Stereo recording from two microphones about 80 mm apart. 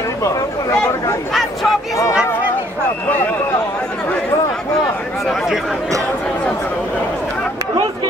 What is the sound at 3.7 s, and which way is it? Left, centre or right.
Chatter, centre.